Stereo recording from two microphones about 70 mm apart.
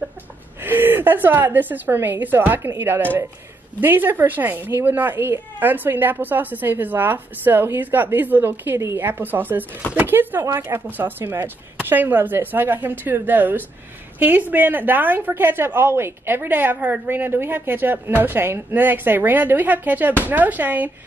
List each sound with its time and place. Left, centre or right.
0.7 s a woman's voice: right